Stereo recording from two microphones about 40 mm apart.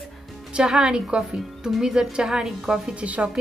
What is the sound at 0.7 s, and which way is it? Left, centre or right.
A woman's voice, right.